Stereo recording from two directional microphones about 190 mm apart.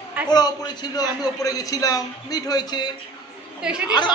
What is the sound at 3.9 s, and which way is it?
Speech, 25° left (ahead or behind).